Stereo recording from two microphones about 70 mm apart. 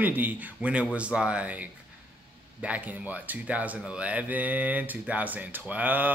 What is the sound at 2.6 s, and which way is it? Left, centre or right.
Speech, centre.